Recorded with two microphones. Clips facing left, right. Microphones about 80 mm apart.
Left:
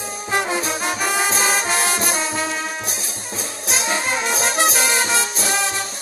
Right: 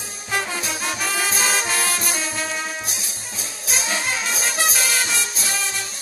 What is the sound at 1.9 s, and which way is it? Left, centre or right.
Music, left.